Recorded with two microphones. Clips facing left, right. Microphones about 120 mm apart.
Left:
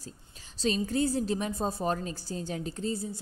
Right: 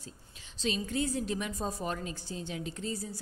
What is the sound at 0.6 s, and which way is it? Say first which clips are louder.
A woman's voice: left 4 dB; 35° left (ahead or behind).